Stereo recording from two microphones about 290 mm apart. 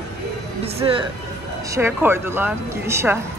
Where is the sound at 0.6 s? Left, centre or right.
Centre.